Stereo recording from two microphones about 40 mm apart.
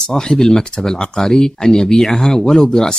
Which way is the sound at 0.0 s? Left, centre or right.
Centre.